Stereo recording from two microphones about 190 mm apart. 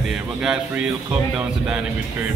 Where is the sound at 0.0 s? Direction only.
5° right (ahead or behind).